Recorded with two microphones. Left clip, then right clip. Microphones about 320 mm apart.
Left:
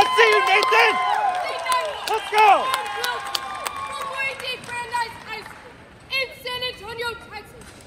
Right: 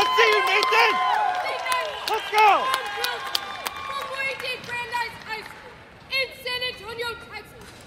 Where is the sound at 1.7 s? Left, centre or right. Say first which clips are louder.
Left 5 dB; left.